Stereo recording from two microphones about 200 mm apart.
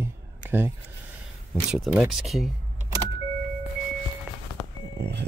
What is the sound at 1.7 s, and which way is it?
Speech, centre (ahead or behind).